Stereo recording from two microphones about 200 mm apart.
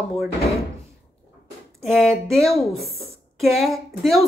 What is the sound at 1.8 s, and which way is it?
Speech, centre (ahead or behind).